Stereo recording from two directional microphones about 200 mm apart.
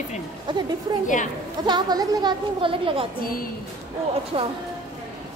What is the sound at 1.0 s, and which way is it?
Speech, 40° left (ahead or behind).